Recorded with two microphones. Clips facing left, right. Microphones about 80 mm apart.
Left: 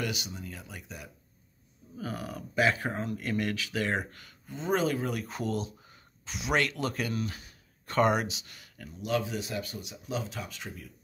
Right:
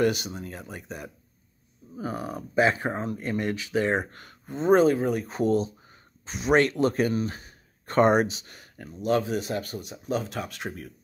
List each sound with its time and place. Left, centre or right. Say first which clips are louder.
0.0 s speech: right 10 dB; right
2.0 s speech: right 5 dB; right
4.1 s speech: right 6 dB; right